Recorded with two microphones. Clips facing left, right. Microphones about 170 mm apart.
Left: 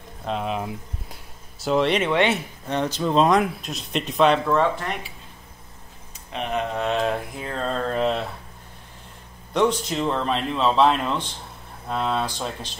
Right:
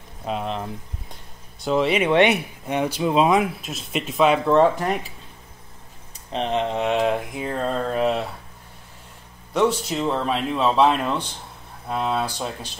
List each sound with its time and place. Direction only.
0.2 s speech: centre (ahead or behind)
2.0 s speech: 15° right (ahead or behind)
6.3 s speech: 25° right (ahead or behind); by 8.3 s 10° right (ahead or behind)
9.5 s speech: 10° right (ahead or behind)